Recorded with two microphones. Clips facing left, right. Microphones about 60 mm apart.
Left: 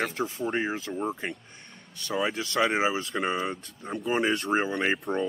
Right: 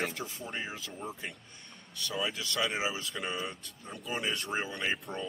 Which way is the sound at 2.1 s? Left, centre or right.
Left.